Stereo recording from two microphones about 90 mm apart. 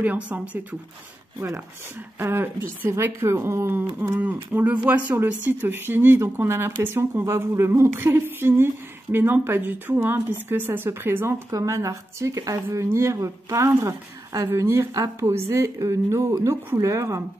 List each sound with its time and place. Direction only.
0.0 s speech: 15° right (ahead or behind)
2.1 s a woman's voice: 25° right (ahead or behind)